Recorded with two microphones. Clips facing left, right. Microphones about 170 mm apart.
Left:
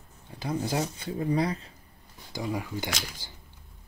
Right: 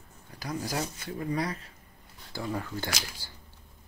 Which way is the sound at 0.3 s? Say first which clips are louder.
Left 4 dB; 25° left (ahead or behind).